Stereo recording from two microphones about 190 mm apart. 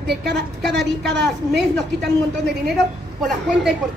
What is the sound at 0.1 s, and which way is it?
A woman's voice, 60° right (ahead or behind).